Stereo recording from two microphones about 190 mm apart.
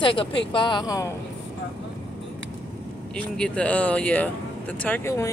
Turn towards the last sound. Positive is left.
turn(degrees=15)  # may be behind; listen again after turning